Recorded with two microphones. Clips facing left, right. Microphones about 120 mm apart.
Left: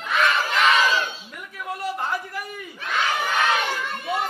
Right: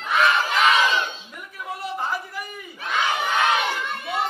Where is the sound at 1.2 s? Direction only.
5° left (ahead or behind).